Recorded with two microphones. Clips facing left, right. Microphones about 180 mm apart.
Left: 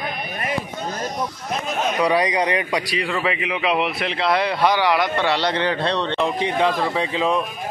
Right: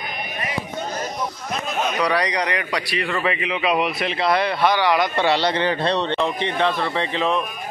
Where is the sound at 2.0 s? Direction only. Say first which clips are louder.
Left 4 dB; 20° left (ahead or behind).